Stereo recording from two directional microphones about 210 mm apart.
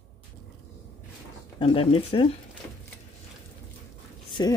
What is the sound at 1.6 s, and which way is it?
Speech, 25° left (ahead or behind).